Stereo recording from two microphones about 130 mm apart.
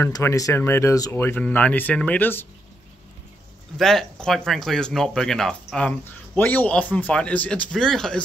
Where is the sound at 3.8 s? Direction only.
5° left (ahead or behind).